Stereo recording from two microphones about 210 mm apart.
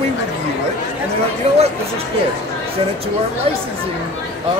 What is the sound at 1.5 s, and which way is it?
Speech, 30° right (ahead or behind).